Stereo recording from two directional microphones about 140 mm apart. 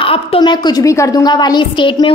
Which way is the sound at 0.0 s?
40° left (ahead or behind).